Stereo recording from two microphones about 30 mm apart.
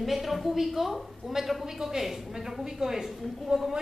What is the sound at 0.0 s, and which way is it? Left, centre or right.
A woman's voice, centre.